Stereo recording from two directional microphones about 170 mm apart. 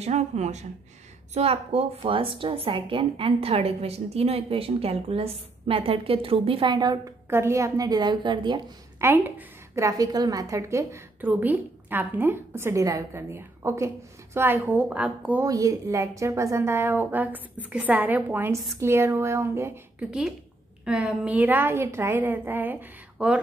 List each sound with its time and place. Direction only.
0.0 s a woman's voice: 40° right (ahead or behind)
9.0 s a woman's voice: 10° right (ahead or behind)
15.4 s a woman's voice: 20° right (ahead or behind)